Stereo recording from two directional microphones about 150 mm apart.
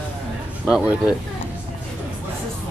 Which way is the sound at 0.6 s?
5° right (ahead or behind).